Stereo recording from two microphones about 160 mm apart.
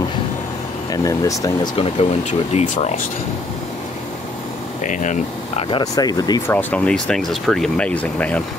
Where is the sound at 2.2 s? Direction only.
45° left (ahead or behind).